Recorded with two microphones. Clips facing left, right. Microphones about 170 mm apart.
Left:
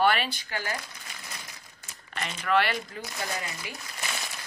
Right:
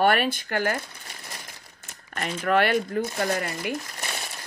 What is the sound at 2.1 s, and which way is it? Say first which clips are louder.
Speech: right 3 dB; 50° right (ahead or behind).